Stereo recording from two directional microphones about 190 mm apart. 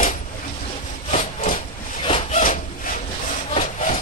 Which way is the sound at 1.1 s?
40° left (ahead or behind).